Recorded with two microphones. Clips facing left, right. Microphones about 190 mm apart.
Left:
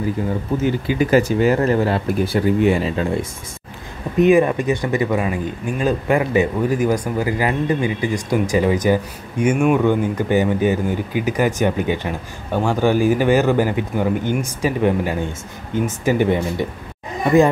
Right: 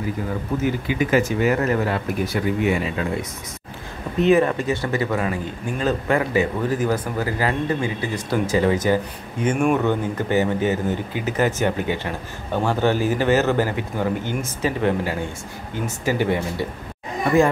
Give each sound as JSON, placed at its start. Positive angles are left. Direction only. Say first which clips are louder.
{"t": 0.6, "sound": "speech", "louder": "left 3 dB", "side_deg": 30}
{"t": 4.2, "sound": "speech", "louder": "left 3 dB", "side_deg": 15}